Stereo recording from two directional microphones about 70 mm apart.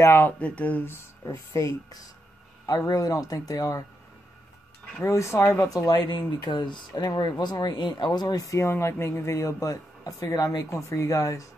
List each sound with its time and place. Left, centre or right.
0.0 s speech: left
0.4 s speech: left
1.2 s speech: left
5.0 s speech: left
5.9 s speech: left
8.5 s speech: left